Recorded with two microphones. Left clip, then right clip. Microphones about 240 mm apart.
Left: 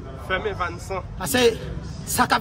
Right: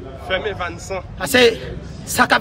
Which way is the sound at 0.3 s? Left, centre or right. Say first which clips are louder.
Right 3 dB; left.